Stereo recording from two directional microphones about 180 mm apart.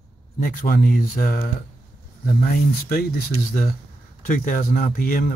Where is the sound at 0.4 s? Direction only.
50° left (ahead or behind).